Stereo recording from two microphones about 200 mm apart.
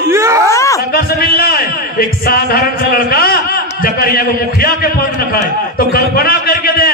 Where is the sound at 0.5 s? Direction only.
15° left (ahead or behind).